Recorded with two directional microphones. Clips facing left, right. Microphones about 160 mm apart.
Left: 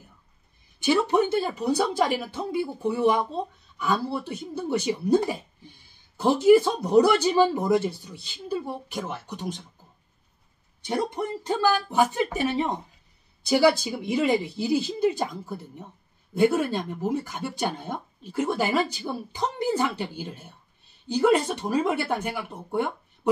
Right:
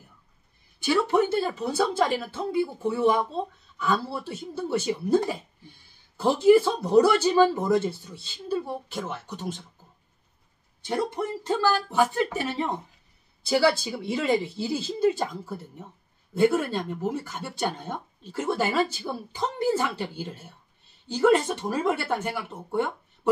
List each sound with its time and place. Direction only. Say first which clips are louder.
0.7 s speech: left 1 dB; 20° left (ahead or behind)
10.8 s speech: even; 15° left (ahead or behind)